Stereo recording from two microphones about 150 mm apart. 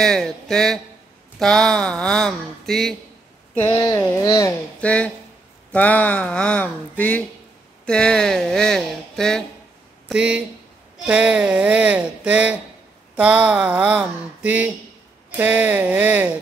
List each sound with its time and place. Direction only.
0.0 s speech: 5° left (ahead or behind)
3.8 s a sound: 20° left (ahead or behind)
4.7 s speech: 10° left (ahead or behind)
10.0 s speech: 5° right (ahead or behind)